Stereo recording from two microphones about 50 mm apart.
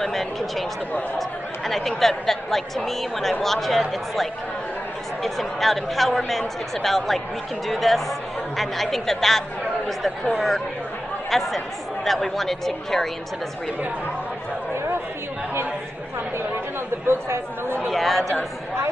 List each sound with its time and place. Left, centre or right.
0.0 s speech: centre
1.7 s speech: centre
5.2 s speech: centre
11.2 s speech: centre
17.1 s chatter: right
17.8 s speech: centre